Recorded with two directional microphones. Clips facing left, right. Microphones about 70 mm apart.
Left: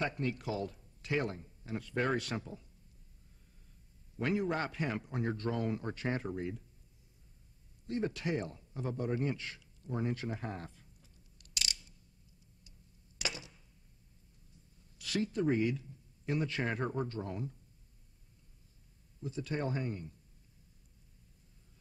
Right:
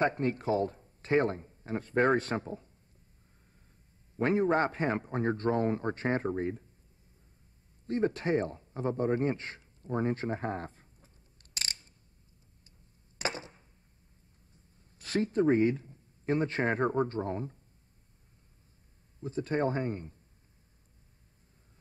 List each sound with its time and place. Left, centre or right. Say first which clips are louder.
0.0 s speech: right 7 dB; right
4.2 s speech: right 7 dB; right
7.8 s a man's voice: right 6 dB; right
13.2 s a sound: right 6 dB; right
15.0 s speech: right 6 dB; right
19.2 s speech: right 7 dB; right